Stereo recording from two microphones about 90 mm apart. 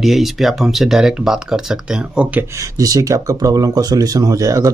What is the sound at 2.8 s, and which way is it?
Speech, 40° right (ahead or behind).